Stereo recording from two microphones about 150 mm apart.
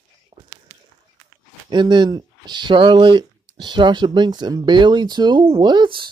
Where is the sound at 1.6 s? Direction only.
30° right (ahead or behind).